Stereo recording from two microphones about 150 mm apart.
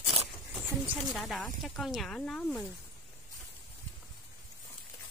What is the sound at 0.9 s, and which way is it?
Speech, centre (ahead or behind).